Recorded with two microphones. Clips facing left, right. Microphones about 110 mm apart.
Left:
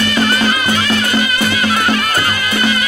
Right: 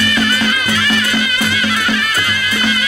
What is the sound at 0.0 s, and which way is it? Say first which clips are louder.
Music: left 2 dB; 35° left (ahead or behind).